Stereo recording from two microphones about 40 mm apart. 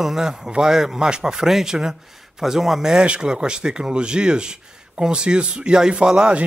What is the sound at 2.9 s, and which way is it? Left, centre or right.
Speech, right.